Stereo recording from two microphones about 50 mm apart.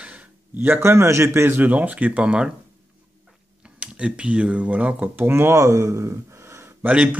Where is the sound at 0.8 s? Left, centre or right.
Right.